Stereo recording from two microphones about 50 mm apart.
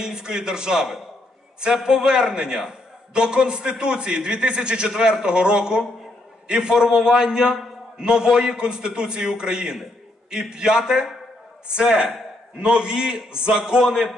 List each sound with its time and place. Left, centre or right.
0.0 s a man's voice: centre